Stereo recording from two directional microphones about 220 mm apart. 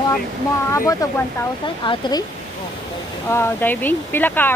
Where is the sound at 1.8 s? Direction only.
25° left (ahead or behind).